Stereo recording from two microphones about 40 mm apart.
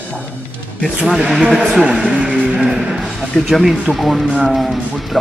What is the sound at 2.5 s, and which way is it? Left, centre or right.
Music, centre.